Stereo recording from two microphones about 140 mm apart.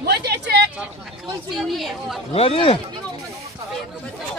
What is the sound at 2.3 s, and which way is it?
Speech, 45° left (ahead or behind).